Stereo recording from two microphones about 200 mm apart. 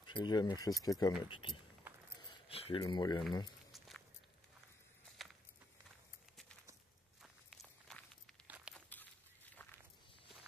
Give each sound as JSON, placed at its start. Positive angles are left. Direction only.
{"t": 0.0, "sound": "speech", "side_deg": 20}
{"t": 2.2, "sound": "a sound", "side_deg": 25}
{"t": 2.8, "sound": "speech", "side_deg": 20}
{"t": 3.7, "sound": "walk", "side_deg": 0}
{"t": 5.2, "sound": "walk", "side_deg": 0}
{"t": 7.2, "sound": "walk", "side_deg": 0}
{"t": 8.5, "sound": "a sound", "side_deg": -5}